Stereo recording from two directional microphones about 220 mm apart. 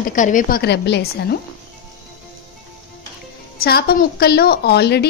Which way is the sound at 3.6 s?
45° left (ahead or behind).